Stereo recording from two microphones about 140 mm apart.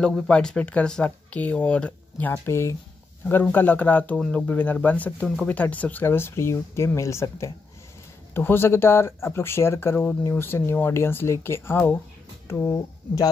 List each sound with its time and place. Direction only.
0.0 s speech: 5° left (ahead or behind); by 13.3 s 25° left (ahead or behind)